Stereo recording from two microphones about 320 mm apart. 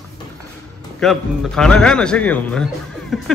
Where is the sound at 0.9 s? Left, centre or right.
Centre.